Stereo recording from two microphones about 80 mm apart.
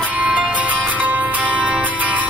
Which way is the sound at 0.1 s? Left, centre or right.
Centre.